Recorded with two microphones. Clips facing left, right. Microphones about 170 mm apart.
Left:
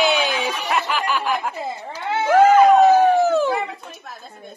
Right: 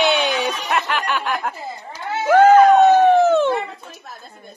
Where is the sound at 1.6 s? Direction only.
25° left (ahead or behind).